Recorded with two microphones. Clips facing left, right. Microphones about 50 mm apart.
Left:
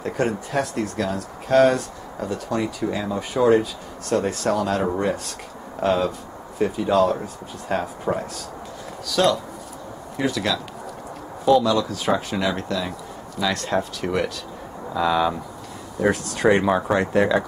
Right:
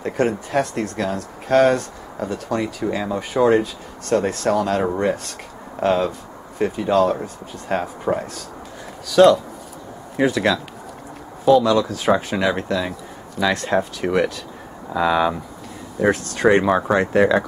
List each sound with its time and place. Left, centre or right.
0.0 s speech: centre
10.1 s speech: right
11.4 s speech: centre
16.0 s speech: centre